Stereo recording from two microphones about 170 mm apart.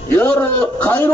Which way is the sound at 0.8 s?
10° left (ahead or behind).